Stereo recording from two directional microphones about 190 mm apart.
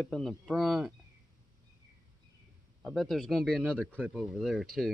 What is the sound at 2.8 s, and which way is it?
Speech, centre (ahead or behind).